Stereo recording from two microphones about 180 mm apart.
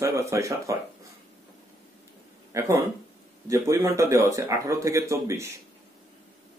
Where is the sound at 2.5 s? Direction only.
15° right (ahead or behind).